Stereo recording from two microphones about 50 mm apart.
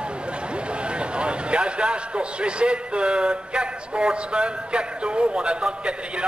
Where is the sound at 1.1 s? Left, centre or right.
Right.